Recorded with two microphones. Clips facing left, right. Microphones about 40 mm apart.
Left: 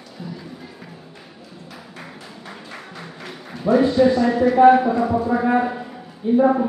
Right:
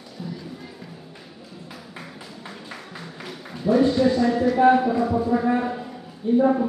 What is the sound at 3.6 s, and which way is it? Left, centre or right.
Music, left.